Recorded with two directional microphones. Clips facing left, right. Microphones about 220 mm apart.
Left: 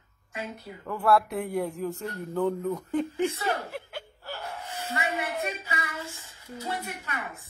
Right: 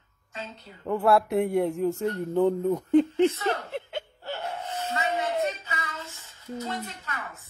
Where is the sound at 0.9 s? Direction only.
20° right (ahead or behind).